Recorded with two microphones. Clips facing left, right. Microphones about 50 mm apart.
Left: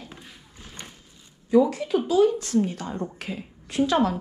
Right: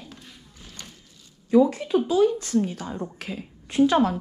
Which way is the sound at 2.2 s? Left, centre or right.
Left.